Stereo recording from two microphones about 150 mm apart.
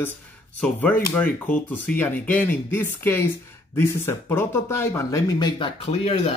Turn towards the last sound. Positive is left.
turn(degrees=40)  # may be behind; listen again after turning